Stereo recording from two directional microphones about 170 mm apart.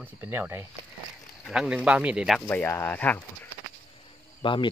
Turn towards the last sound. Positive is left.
turn(degrees=30)  # may be behind; listen again after turning